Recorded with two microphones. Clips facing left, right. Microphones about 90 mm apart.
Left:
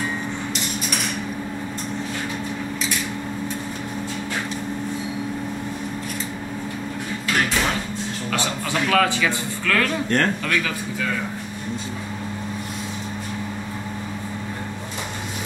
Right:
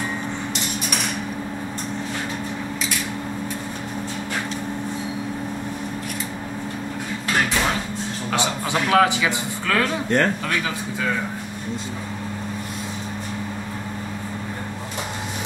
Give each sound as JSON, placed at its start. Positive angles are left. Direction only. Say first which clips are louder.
{"t": 8.3, "sound": "a man's voice", "louder": "right 2 dB", "side_deg": -20}